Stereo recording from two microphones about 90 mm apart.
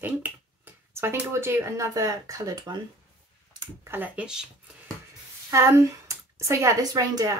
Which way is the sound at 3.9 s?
20° right (ahead or behind).